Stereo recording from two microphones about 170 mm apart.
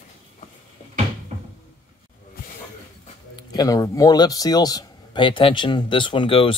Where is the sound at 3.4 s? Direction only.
25° left (ahead or behind).